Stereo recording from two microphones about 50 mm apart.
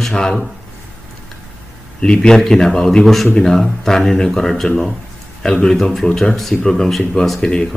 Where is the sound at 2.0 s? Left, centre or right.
Centre.